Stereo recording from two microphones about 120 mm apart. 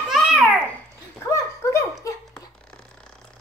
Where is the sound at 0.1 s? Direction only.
Centre (ahead or behind).